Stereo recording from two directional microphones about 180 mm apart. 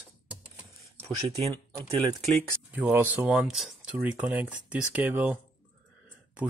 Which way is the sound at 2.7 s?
10° right (ahead or behind).